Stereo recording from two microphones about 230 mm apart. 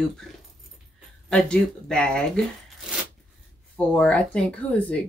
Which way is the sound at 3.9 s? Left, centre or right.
Centre.